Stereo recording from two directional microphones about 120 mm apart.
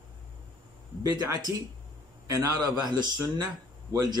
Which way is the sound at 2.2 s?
25° right (ahead or behind).